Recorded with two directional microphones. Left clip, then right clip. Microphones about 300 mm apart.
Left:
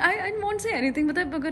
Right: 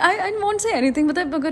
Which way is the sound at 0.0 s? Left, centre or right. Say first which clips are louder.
Right 5 dB; centre.